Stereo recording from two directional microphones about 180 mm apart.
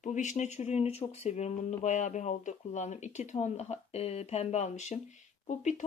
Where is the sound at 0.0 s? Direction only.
45° left (ahead or behind).